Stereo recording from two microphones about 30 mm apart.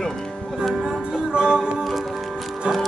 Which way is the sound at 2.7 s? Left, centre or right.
Right.